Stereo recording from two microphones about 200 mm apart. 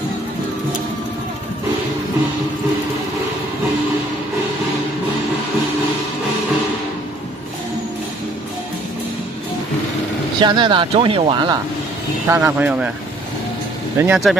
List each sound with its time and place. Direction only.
10.4 s speech: 25° right (ahead or behind); by 12.9 s 5° right (ahead or behind)
13.9 s speech: 5° right (ahead or behind)